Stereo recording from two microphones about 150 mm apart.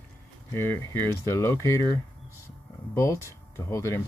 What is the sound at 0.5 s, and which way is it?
Speech, 15° left (ahead or behind).